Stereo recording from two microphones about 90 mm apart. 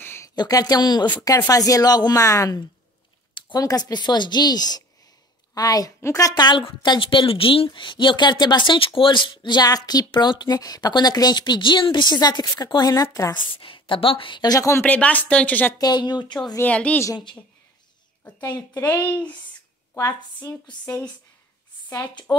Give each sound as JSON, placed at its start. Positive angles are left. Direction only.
{"t": 0.0, "sound": "a sound", "side_deg": 30}
{"t": 0.4, "sound": "a woman's voice", "side_deg": 45}
{"t": 6.6, "sound": "a woman's voice", "side_deg": 65}
{"t": 13.4, "sound": "a woman's voice", "side_deg": 75}
{"t": 14.5, "sound": "a woman's voice", "side_deg": 40}
{"t": 14.8, "sound": "speech", "side_deg": 15}
{"t": 15.8, "sound": "a woman's voice", "side_deg": 50}
{"t": 16.6, "sound": "speech", "side_deg": 15}
{"t": 18.8, "sound": "speech", "side_deg": 20}